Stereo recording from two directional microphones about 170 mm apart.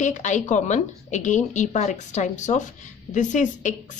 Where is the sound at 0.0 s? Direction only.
45° left (ahead or behind).